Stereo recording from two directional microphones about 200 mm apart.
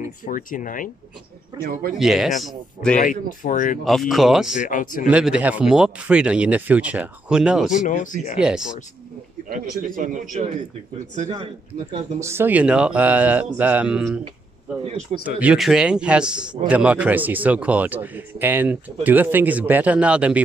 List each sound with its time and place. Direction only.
0.0 s speech: 40° left (ahead or behind)
1.7 s a man's voice: 45° right (ahead or behind)
2.0 s speech: centre (ahead or behind)
3.0 s speech: 40° left (ahead or behind)
3.8 s speech: centre (ahead or behind)
4.6 s speech: 40° left (ahead or behind)
5.1 s speech: 5° right (ahead or behind)
7.7 s speech: 40° left (ahead or behind)
8.4 s speech: 5° right (ahead or behind)
9.5 s a man's voice: 45° right (ahead or behind)
11.1 s a man's voice: 30° right (ahead or behind)
11.9 s a man's voice: 15° right (ahead or behind)
15.2 s a man's voice: 5° right (ahead or behind)